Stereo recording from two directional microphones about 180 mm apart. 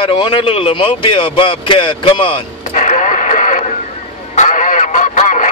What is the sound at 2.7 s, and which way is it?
Radio, 45° left (ahead or behind).